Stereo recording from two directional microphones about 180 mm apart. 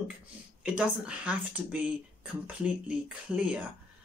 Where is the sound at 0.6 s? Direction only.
5° right (ahead or behind).